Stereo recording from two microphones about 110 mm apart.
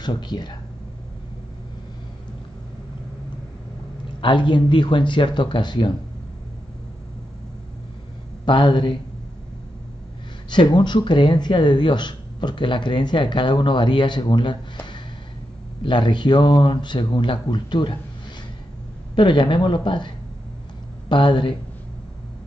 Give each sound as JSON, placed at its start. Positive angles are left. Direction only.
{"t": 0.0, "sound": "speech", "side_deg": 40}
{"t": 4.2, "sound": "speech", "side_deg": 50}
{"t": 8.5, "sound": "speech", "side_deg": 50}
{"t": 10.5, "sound": "speech", "side_deg": 40}
{"t": 19.1, "sound": "speech", "side_deg": 45}
{"t": 21.1, "sound": "speech", "side_deg": 45}